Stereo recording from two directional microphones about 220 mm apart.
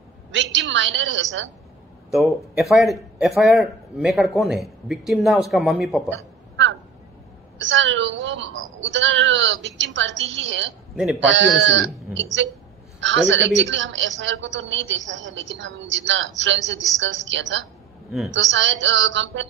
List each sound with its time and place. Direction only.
0.3 s a woman's voice: 55° right (ahead or behind)
2.1 s a man's voice: centre (ahead or behind)
7.5 s a woman's voice: 55° right (ahead or behind)